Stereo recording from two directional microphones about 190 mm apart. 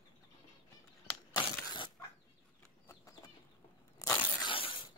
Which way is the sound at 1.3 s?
25° left (ahead or behind).